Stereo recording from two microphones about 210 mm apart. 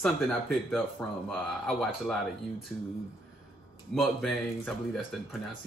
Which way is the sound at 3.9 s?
Centre (ahead or behind).